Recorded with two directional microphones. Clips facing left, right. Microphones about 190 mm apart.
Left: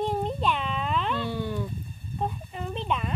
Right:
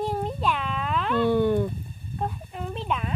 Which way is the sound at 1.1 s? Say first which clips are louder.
Right 9 dB; 55° right (ahead or behind).